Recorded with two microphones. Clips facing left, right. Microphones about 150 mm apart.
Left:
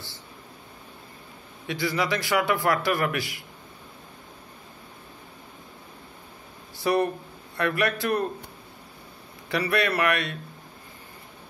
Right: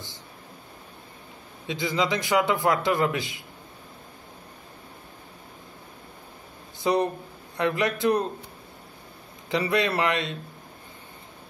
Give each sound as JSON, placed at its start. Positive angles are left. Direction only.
{"t": 1.7, "sound": "a man's voice", "side_deg": -20}
{"t": 6.8, "sound": "a man's voice", "side_deg": -20}
{"t": 9.5, "sound": "a man's voice", "side_deg": -20}